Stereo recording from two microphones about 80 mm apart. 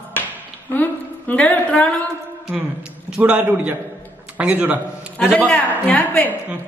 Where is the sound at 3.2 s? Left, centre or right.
Centre.